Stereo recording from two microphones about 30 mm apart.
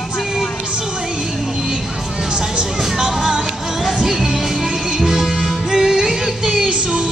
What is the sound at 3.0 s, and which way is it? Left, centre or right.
Music, right.